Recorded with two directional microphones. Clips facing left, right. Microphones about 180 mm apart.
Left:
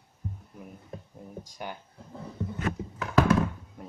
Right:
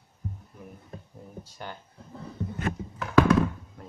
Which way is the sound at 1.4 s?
15° left (ahead or behind).